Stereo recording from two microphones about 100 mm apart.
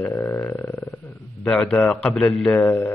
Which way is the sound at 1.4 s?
10° left (ahead or behind).